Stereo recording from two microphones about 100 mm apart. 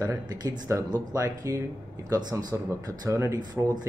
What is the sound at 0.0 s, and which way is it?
Speech, 35° right (ahead or behind).